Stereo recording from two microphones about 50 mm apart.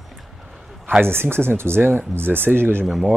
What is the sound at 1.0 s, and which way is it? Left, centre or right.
Speech, right.